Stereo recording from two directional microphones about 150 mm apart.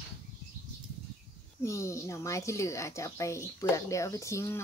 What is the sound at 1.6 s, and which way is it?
Speech, 20° left (ahead or behind).